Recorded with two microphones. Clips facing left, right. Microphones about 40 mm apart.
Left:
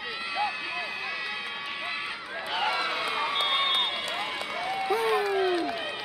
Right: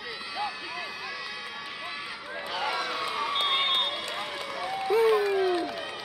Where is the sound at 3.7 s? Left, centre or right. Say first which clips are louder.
Left 1 dB; left.